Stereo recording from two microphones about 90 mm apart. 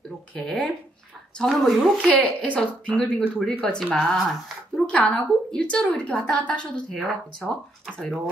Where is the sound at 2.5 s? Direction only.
15° left (ahead or behind).